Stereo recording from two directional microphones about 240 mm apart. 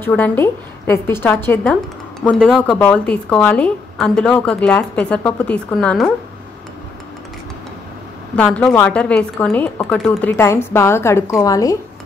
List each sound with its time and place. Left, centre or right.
0.0 s a woman's voice: centre
8.4 s a woman's voice: centre